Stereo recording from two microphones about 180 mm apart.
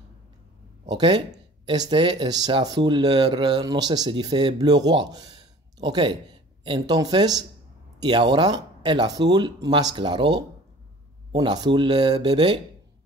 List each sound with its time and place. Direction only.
0.8 s speech: 25° right (ahead or behind)